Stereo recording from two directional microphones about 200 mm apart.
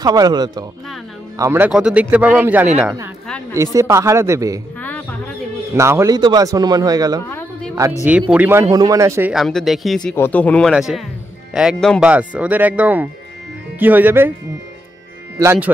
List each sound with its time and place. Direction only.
0.0 s a man's voice: 20° right (ahead or behind)
4.7 s music: 5° left (ahead or behind)
5.8 s speech: 15° right (ahead or behind)
7.2 s a sound: 10° left (ahead or behind)
8.0 s a man's voice: 5° right (ahead or behind)
9.3 s a man's voice: centre (ahead or behind)
15.3 s speech: 10° right (ahead or behind)